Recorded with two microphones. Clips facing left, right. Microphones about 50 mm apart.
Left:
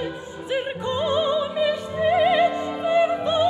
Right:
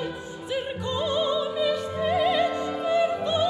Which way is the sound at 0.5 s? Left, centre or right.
Left.